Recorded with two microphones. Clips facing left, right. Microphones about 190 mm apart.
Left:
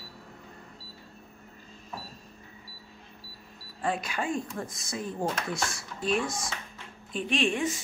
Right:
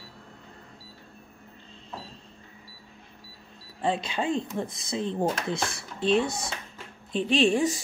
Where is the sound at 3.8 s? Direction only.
25° right (ahead or behind).